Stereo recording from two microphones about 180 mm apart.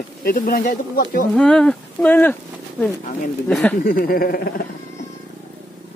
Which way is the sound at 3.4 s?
10° left (ahead or behind).